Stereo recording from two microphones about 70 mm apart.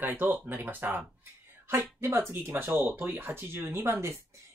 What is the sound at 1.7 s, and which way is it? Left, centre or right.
Speech, right.